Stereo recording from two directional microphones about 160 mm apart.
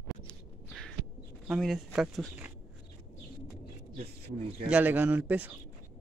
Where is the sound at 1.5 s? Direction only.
5° right (ahead or behind).